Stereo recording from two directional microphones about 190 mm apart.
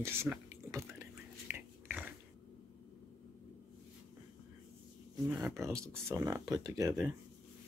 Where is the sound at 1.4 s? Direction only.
5° right (ahead or behind).